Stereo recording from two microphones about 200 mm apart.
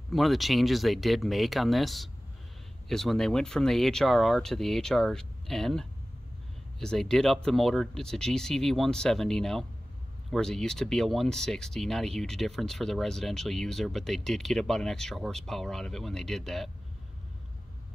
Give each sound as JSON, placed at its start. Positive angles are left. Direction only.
{"t": 0.1, "sound": "speech", "side_deg": 0}